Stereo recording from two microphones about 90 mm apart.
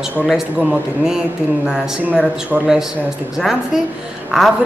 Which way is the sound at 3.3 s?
5° right (ahead or behind).